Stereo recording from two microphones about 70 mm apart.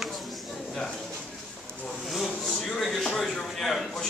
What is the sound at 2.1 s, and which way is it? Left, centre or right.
Speech, centre.